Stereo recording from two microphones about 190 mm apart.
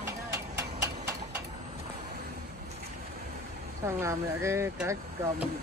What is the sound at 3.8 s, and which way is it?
Speech, 15° right (ahead or behind).